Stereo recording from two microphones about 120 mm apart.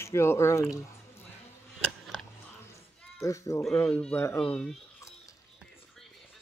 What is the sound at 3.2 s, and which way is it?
Speech, 25° left (ahead or behind).